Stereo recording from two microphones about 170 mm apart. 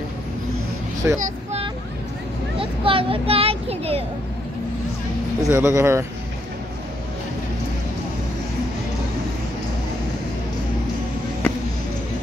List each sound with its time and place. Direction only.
1.0 s speech: 15° right (ahead or behind)
2.6 s speech: 30° right (ahead or behind)
5.4 s speech: 15° right (ahead or behind)